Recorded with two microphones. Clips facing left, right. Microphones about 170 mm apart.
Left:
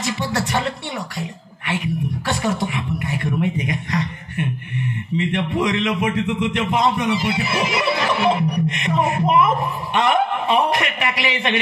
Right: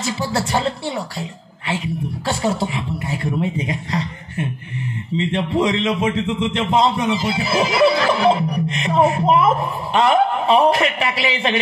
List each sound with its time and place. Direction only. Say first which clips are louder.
0.0 s a man's voice: right 1 dB; 30° right (ahead or behind)
1.7 s a sound: even; 25° right (ahead or behind)
5.1 s a man's voice: right 2 dB; 25° right (ahead or behind)